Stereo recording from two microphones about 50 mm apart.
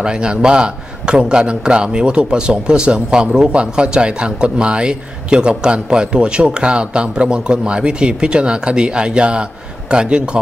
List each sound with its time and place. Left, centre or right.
0.0 s a man's voice: centre